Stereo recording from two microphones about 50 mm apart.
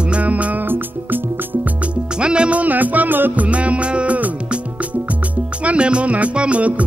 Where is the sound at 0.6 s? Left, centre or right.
Right.